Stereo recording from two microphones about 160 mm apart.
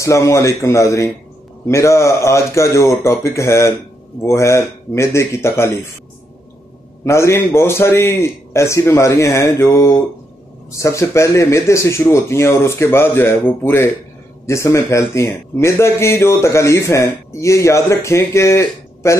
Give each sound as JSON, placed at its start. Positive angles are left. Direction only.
{"t": 0.0, "sound": "a man's voice", "side_deg": 20}
{"t": 7.1, "sound": "a man's voice", "side_deg": 15}